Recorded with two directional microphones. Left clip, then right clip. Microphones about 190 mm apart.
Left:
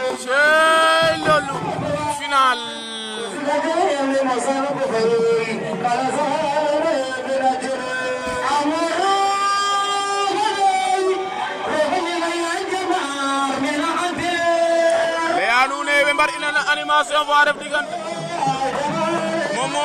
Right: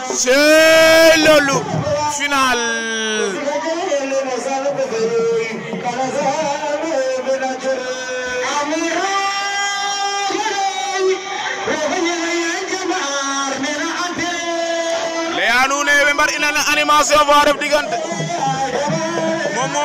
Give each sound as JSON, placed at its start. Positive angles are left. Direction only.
{"t": 0.3, "sound": "speech", "side_deg": -20}
{"t": 15.4, "sound": "a sound", "side_deg": 0}
{"t": 16.5, "sound": "a man's voice", "side_deg": -10}